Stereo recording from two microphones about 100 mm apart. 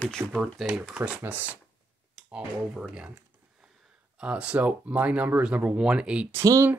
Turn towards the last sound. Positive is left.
turn(degrees=-25)  # may be behind; listen again after turning